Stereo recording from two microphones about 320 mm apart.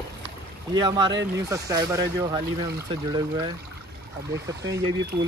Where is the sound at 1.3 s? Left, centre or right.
Centre.